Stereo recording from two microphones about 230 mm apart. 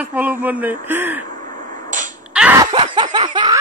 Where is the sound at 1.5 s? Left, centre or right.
Right.